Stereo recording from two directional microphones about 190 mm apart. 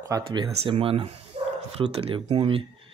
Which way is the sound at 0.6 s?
30° right (ahead or behind).